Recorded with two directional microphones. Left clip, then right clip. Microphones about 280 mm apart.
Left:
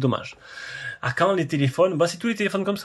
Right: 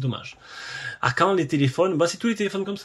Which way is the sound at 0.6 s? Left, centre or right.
Centre.